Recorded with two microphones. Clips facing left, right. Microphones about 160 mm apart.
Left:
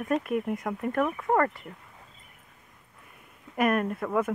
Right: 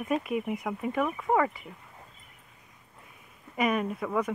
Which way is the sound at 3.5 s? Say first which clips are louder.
Left 2 dB; centre (ahead or behind).